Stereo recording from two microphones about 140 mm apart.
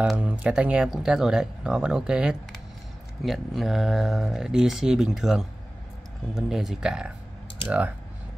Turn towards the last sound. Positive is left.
turn(degrees=-10)  # may be behind; listen again after turning